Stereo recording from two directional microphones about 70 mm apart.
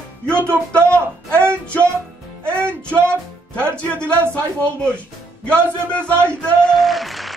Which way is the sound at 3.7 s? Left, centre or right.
Centre.